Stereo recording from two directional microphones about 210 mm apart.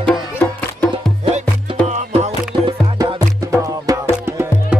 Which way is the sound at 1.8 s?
30° right (ahead or behind).